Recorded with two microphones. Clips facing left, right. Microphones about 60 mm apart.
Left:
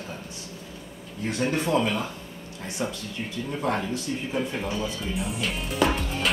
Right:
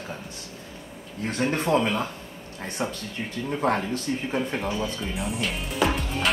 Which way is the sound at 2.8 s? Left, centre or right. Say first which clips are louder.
Even; right.